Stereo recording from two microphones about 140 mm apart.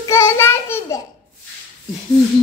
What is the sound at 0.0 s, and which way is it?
Child singing, 20° left (ahead or behind).